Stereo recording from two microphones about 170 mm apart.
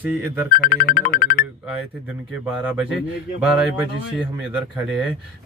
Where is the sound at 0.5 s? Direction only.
65° left (ahead or behind).